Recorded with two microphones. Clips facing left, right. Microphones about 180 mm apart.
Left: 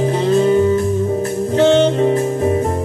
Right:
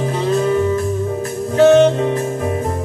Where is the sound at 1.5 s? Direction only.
30° left (ahead or behind).